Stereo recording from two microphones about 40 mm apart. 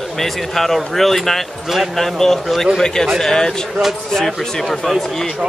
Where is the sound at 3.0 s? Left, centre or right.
Centre.